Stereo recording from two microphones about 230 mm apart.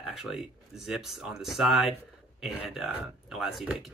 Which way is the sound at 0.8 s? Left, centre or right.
Centre.